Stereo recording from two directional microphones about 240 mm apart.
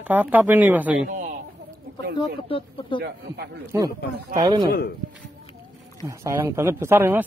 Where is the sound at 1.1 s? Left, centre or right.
Right.